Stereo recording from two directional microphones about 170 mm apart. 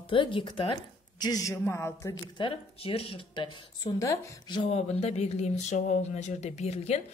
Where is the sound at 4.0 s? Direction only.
20° left (ahead or behind).